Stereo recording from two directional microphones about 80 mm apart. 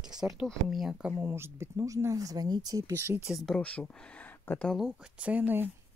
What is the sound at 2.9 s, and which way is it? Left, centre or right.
Speech, right.